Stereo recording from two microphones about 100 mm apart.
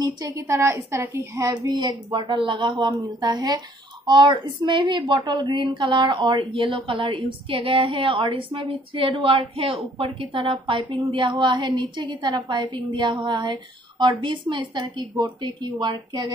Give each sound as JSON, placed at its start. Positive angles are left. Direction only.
{"t": 0.0, "sound": "a woman's voice", "side_deg": -40}
{"t": 0.4, "sound": "a woman's voice", "side_deg": -25}
{"t": 1.4, "sound": "a woman's voice", "side_deg": -35}